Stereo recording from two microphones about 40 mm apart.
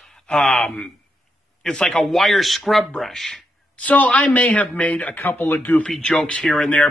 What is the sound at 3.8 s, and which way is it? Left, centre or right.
Speech, left.